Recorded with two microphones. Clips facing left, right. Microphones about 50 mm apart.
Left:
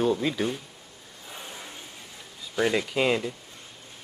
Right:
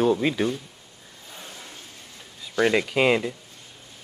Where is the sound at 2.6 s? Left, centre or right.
Right.